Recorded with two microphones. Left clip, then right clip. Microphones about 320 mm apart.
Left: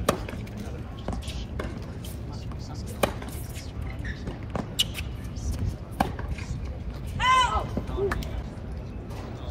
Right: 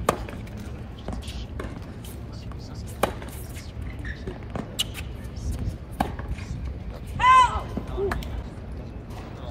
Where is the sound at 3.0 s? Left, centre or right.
Centre.